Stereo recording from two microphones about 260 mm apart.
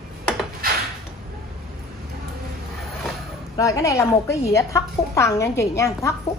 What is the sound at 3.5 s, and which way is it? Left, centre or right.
A woman's voice, centre.